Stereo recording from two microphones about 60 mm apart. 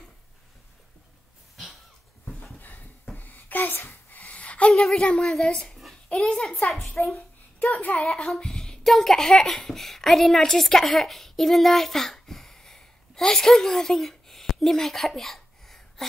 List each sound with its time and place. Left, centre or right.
2.4 s a sound: left
4.9 s a child's voice: left
5.2 s a woman's voice: centre
7.0 s a child's voice: left
8.4 s speech: centre